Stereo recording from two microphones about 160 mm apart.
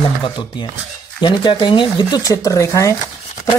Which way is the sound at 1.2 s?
25° left (ahead or behind).